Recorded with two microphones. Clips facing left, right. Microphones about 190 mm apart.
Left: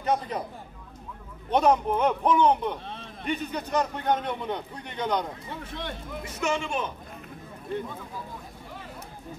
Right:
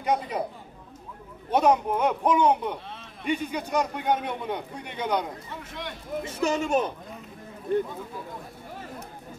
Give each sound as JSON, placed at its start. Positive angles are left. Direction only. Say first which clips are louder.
{"t": 0.0, "sound": "a man's voice", "louder": "right 1 dB", "side_deg": -10}
{"t": 1.5, "sound": "a man's voice", "louder": "even", "side_deg": -10}
{"t": 5.6, "sound": "speech", "louder": "left 2 dB", "side_deg": 30}
{"t": 6.2, "sound": "a man's voice", "louder": "right 2 dB", "side_deg": -30}